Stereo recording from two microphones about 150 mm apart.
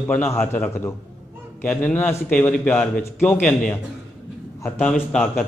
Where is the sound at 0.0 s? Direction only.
10° left (ahead or behind).